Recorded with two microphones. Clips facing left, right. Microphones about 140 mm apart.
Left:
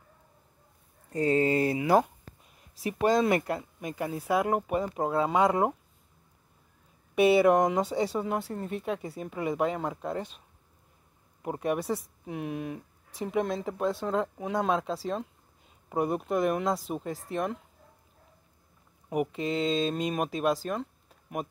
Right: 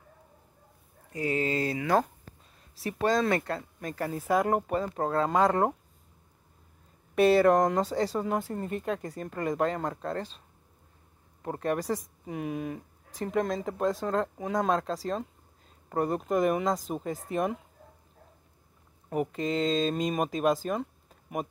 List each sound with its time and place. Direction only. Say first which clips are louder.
1.1 s speech: left 4 dB; 30° left (ahead or behind); by 5.8 s 10° left (ahead or behind)
7.2 s speech: even; 10° left (ahead or behind)
11.4 s speech: even; 10° left (ahead or behind)
19.0 s speech: even; 5° left (ahead or behind)
20.6 s a sound: right 2 dB; centre (ahead or behind)